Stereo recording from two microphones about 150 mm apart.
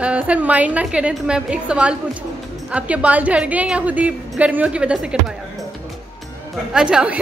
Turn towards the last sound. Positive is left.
turn(degrees=-5)  # may be behind; listen again after turning